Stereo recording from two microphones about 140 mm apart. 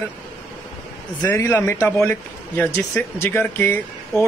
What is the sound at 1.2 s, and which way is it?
Speech, 20° left (ahead or behind).